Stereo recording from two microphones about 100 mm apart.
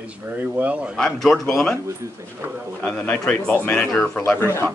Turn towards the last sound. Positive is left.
turn(degrees=20)  # may be behind; listen again after turning